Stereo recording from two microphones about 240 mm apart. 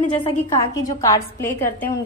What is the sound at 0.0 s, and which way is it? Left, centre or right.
Speech, left.